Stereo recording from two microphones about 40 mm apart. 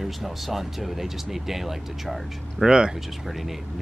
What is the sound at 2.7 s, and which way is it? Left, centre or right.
Speech, centre.